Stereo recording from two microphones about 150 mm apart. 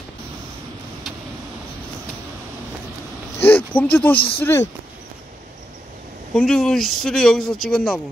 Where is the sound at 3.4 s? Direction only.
10° left (ahead or behind).